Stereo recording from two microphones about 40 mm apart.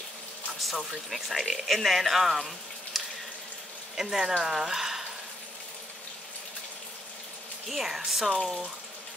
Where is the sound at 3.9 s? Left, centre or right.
Centre.